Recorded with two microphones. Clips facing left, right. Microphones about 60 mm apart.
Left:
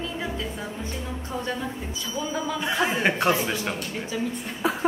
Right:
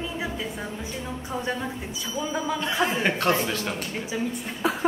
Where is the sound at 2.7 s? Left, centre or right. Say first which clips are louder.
Left 2 dB; centre.